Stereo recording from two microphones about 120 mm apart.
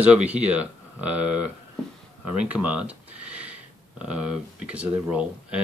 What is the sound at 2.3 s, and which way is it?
Speech, 10° right (ahead or behind).